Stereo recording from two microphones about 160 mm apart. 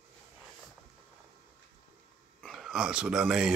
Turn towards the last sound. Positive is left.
turn(degrees=-5)  # may be behind; listen again after turning